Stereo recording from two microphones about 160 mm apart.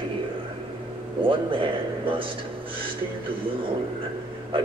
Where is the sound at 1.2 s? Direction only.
35° right (ahead or behind).